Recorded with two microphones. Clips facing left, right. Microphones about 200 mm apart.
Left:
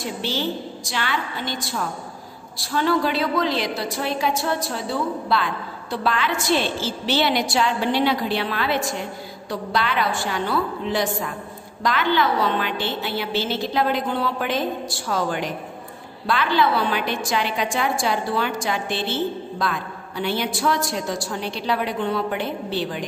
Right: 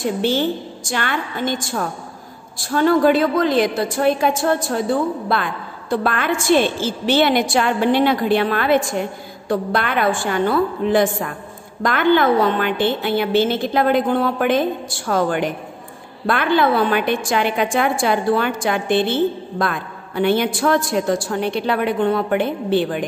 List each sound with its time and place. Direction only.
0.0 s a woman's voice: 50° right (ahead or behind)